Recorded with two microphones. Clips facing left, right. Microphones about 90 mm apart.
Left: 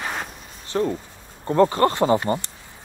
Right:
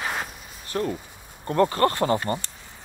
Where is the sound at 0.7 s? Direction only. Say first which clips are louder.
Left 4 dB; 25° left (ahead or behind).